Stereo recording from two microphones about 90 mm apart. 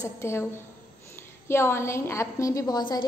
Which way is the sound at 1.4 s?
30° left (ahead or behind).